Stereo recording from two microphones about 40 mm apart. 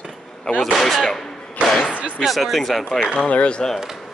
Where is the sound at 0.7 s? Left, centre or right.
Centre.